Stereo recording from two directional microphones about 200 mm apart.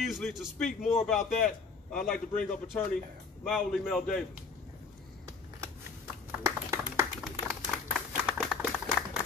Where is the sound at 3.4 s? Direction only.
Centre (ahead or behind).